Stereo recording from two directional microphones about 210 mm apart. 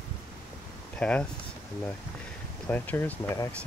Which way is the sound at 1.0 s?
5° left (ahead or behind).